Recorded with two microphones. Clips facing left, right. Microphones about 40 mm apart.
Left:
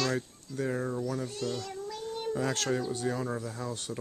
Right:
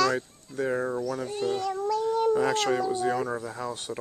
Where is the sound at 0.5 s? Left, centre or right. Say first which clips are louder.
Right 4 dB; centre.